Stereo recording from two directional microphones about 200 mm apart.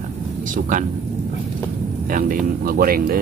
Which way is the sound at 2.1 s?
45° right (ahead or behind).